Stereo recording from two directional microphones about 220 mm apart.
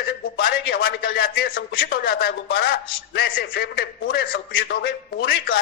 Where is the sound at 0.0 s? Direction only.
45° left (ahead or behind).